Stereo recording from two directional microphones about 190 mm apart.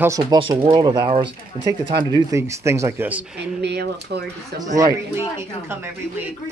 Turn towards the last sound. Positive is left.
turn(degrees=-15)  # may be behind; listen again after turning